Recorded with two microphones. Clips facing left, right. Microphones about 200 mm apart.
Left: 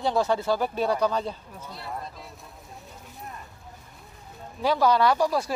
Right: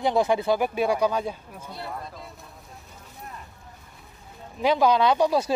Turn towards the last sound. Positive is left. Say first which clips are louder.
# right 2 dB
turn(degrees=-20)  # may be behind; listen again after turning